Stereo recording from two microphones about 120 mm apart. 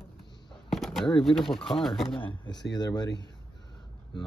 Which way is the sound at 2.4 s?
35° left (ahead or behind).